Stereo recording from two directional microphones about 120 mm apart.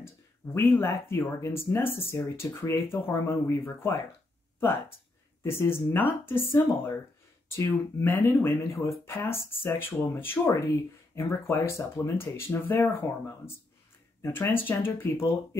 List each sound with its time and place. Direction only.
0.6 s speech: 20° left (ahead or behind)
14.2 s speech: 20° left (ahead or behind)